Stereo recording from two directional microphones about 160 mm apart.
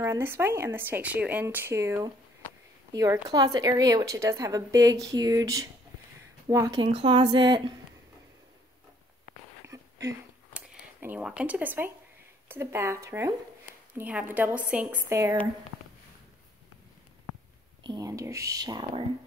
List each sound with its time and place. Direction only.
0.0 s speech: 15° right (ahead or behind)
6.8 s a woman's voice: 35° right (ahead or behind)
9.7 s a sound: 20° right (ahead or behind)
10.5 s a sound: 10° right (ahead or behind)
12.4 s speech: 15° right (ahead or behind)
15.0 s speech: 20° right (ahead or behind)
17.8 s speech: 20° right (ahead or behind)